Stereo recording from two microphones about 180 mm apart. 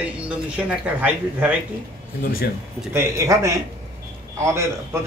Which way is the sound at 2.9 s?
15° right (ahead or behind).